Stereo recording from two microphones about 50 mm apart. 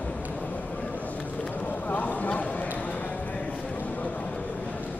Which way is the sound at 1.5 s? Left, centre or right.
Left.